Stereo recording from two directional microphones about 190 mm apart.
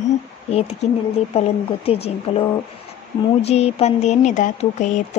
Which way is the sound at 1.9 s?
30° left (ahead or behind).